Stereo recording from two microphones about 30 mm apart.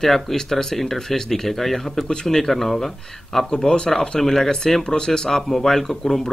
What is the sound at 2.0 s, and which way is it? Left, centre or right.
Speech, left.